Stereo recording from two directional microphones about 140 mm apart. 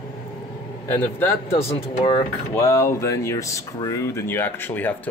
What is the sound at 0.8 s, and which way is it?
Speech, 15° left (ahead or behind).